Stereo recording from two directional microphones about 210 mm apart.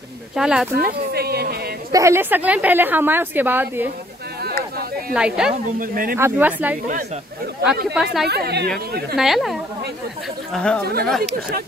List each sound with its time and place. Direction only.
0.4 s speech: 5° right (ahead or behind)
0.7 s a sound: 50° right (ahead or behind)
1.9 s a woman's voice: 15° right (ahead or behind)
5.1 s speech: 5° right (ahead or behind)
5.8 s speech: 40° right (ahead or behind)
6.1 s a woman's voice: 10° right (ahead or behind)
7.9 s speech: centre (ahead or behind)
8.3 s speech: 50° right (ahead or behind)
9.1 s speech: centre (ahead or behind)
10.8 s speech: 50° right (ahead or behind)
11.1 s speech: centre (ahead or behind)